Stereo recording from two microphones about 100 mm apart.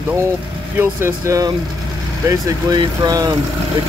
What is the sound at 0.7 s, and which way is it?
Speech, 30° right (ahead or behind).